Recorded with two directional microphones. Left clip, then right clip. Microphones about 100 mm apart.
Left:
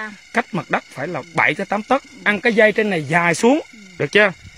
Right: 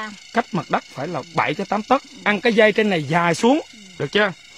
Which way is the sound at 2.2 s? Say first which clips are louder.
Left 1 dB; 45° right (ahead or behind).